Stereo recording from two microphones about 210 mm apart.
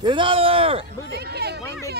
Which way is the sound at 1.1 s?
50° right (ahead or behind).